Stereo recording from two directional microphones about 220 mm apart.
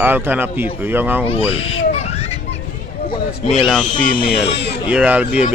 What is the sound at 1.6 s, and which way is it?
Speech, 60° left (ahead or behind).